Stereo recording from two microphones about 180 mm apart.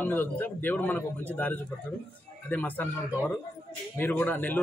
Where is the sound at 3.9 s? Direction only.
10° left (ahead or behind).